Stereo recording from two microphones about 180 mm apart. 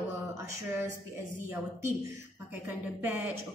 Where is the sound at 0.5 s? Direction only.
15° right (ahead or behind).